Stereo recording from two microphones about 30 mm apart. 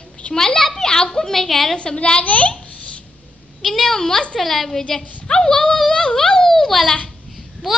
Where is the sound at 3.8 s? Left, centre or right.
Centre.